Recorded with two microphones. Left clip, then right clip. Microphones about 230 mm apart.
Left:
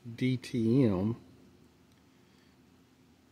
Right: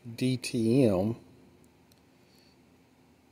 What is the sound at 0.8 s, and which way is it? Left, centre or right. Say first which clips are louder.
Speech: right 5 dB; left.